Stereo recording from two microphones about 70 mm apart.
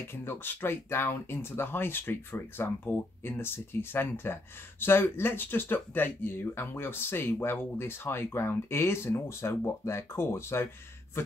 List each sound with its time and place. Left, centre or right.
0.1 s speech: left